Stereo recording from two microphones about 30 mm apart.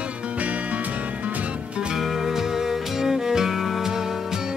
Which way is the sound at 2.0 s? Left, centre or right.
Centre.